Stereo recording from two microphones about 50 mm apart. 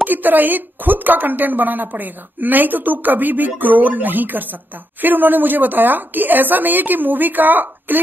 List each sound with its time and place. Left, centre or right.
0.0 s a woman's voice: right